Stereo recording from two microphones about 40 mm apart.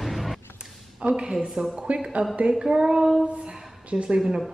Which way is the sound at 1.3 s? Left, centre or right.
Centre.